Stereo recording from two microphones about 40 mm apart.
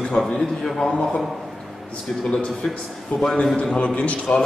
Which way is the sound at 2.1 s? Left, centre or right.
Centre.